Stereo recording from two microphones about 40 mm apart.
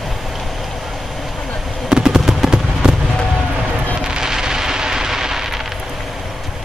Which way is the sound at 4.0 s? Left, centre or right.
Centre.